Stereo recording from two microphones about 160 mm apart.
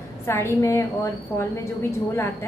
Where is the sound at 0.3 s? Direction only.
15° left (ahead or behind).